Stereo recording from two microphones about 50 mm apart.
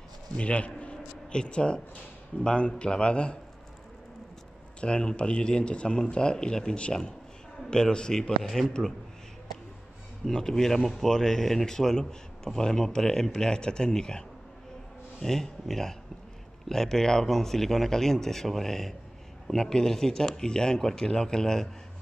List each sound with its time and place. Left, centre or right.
0.4 s a man's voice: left
4.7 s speech: left; by 8.6 s centre
10.2 s speech: centre
15.2 s speech: centre